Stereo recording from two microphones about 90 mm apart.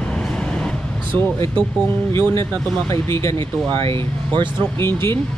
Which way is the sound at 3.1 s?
30° left (ahead or behind).